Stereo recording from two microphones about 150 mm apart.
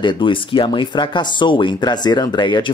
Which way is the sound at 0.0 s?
35° left (ahead or behind).